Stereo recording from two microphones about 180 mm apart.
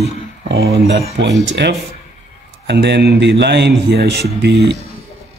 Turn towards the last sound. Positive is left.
turn(degrees=-70)  # may be behind; listen again after turning